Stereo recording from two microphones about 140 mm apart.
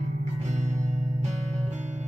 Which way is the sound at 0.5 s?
55° right (ahead or behind).